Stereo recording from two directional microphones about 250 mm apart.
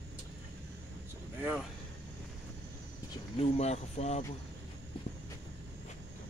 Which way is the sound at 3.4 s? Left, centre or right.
Left.